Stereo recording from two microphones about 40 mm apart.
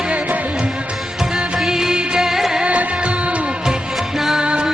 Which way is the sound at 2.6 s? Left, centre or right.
Right.